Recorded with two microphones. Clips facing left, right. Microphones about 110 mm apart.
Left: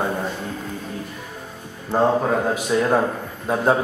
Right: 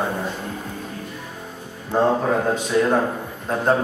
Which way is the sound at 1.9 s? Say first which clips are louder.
Even; 10° left (ahead or behind).